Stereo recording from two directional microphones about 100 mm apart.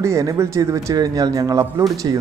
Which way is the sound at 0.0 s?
30° right (ahead or behind).